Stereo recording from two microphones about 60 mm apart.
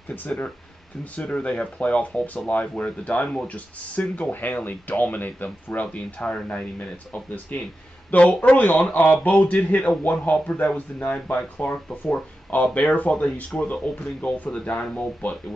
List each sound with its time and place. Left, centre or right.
1.1 s speech: centre
8.1 s speech: left